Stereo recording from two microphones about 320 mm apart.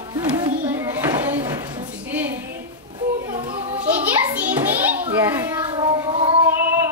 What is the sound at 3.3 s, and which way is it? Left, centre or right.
Children playing, centre.